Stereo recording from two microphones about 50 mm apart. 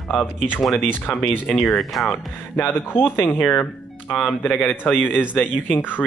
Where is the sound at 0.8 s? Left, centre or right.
Left.